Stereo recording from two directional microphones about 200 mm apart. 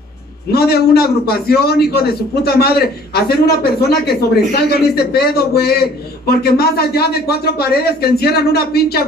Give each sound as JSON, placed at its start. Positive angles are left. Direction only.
{"t": 0.5, "sound": "speech", "side_deg": 50}